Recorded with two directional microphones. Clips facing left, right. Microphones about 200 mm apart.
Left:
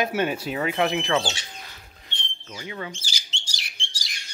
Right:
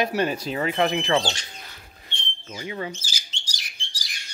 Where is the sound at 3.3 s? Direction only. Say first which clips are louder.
Left 2 dB; 25° left (ahead or behind).